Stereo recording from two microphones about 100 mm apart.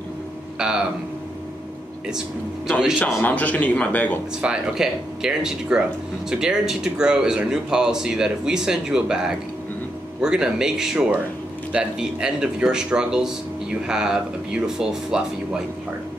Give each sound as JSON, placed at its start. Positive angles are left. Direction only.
{"t": 0.6, "sound": "speech", "side_deg": -5}
{"t": 3.1, "sound": "a man's voice", "side_deg": 15}
{"t": 4.4, "sound": "speech", "side_deg": -10}